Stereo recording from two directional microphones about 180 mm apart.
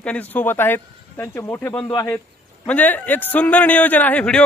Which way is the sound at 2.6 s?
10° left (ahead or behind).